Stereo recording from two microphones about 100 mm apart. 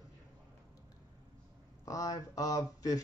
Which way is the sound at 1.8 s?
35° left (ahead or behind).